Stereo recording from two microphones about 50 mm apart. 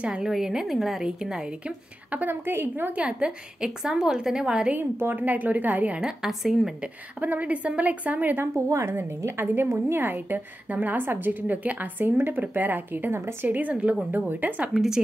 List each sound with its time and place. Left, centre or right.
0.0 s a woman's voice: centre
1.6 s a woman's voice: right
2.4 s a woman's voice: right
3.1 s a woman's voice: centre
4.7 s a woman's voice: right
5.2 s a woman's voice: right
5.9 s a woman's voice: centre
6.4 s a woman's voice: centre
6.8 s a woman's voice: right
8.5 s a woman's voice: right
8.9 s a woman's voice: right
13.2 s a woman's voice: right
13.5 s a woman's voice: right